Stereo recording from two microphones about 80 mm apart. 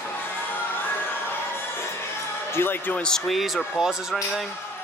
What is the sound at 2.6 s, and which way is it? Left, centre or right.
Speech, left.